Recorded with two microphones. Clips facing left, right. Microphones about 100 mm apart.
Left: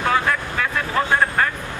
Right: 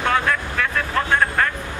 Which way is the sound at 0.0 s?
5° left (ahead or behind).